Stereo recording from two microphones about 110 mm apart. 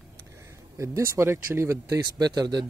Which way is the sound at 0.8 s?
25° right (ahead or behind).